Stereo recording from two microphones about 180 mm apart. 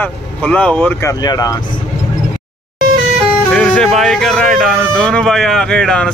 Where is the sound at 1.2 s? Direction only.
20° left (ahead or behind).